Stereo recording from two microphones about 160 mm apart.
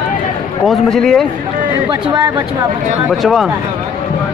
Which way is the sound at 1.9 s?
25° right (ahead or behind).